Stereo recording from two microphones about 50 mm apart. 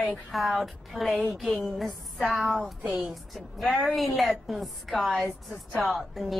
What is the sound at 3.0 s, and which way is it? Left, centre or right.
A woman's voice, centre.